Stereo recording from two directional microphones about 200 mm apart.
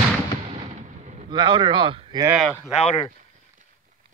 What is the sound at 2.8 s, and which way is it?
Speech, 25° left (ahead or behind).